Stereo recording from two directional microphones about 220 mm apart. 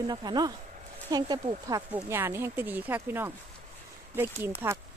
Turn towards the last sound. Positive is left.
turn(degrees=-15)  # may be behind; listen again after turning